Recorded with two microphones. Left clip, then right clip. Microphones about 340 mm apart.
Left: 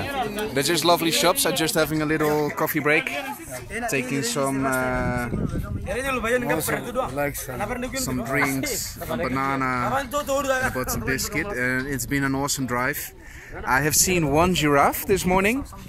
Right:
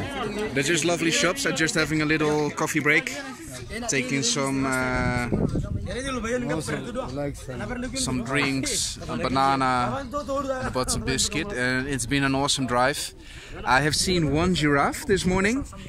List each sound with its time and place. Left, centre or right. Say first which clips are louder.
0.6 s speech: left 4 dB; centre
7.0 s speech: left 7 dB; left
8.0 s speech: left 1 dB; centre
9.9 s speech: left 4 dB; left
11.5 s speech: left 1 dB; centre